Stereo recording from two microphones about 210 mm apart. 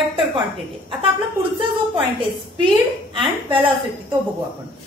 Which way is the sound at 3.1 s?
25° right (ahead or behind).